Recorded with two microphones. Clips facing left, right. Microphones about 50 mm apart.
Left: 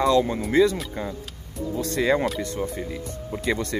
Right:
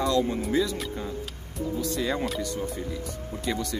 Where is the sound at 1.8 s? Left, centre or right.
Left.